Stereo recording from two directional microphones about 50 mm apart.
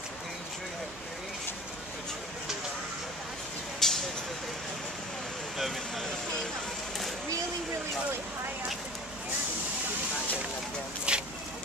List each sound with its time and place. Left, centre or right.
3.8 s vehicle: centre
5.6 s vehicle: centre
11.1 s vehicle: right